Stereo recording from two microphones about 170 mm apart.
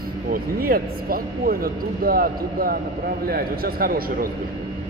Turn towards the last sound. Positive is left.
turn(degrees=-60)  # may be behind; listen again after turning